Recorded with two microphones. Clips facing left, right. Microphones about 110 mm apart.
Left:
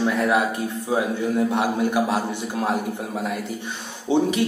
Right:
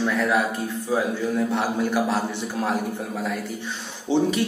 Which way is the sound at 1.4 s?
15° left (ahead or behind).